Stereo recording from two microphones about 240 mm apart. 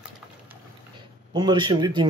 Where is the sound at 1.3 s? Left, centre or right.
Centre.